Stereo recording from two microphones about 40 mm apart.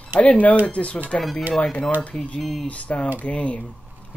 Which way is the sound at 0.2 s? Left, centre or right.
Left.